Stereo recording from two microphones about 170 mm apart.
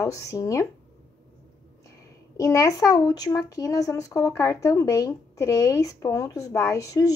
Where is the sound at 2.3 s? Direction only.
20° left (ahead or behind).